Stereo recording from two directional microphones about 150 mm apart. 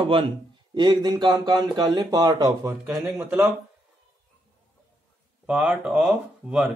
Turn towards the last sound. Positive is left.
turn(degrees=-5)  # may be behind; listen again after turning